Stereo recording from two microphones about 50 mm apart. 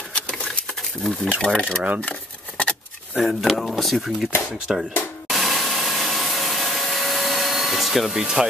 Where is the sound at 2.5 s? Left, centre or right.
Left.